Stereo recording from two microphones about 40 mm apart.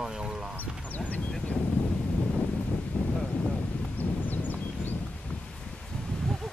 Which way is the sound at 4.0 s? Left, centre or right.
Left.